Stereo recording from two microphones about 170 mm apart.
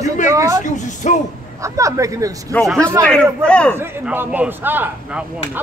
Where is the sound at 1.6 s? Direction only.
20° right (ahead or behind).